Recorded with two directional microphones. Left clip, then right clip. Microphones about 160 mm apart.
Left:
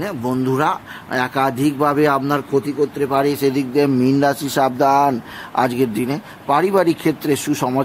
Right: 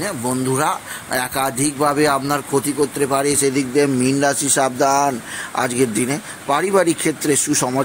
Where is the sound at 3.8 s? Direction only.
5° left (ahead or behind).